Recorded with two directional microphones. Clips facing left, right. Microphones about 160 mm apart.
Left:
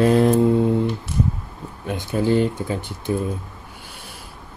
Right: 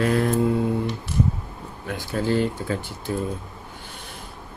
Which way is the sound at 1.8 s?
20° left (ahead or behind).